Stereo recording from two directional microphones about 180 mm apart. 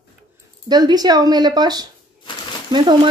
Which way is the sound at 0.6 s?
25° right (ahead or behind).